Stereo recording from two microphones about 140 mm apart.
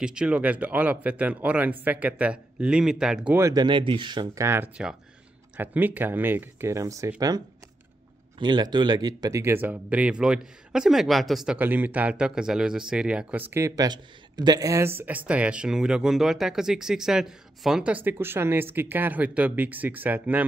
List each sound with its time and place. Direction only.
0.0 s speech: 5° right (ahead or behind)
3.3 s speech: 20° right (ahead or behind)
3.6 s speech: 35° right (ahead or behind)
4.4 s speech: 20° right (ahead or behind); by 11.5 s centre (ahead or behind)
11.5 s speech: 15° right (ahead or behind)